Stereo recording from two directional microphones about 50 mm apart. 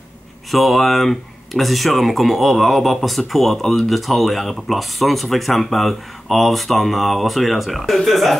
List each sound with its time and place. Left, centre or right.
0.5 s speech: centre